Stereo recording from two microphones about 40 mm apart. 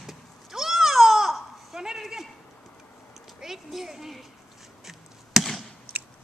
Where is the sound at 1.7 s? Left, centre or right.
Centre.